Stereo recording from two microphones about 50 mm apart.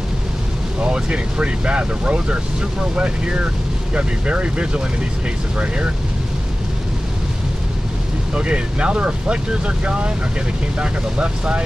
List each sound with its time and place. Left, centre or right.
0.7 s speech: right
8.4 s speech: right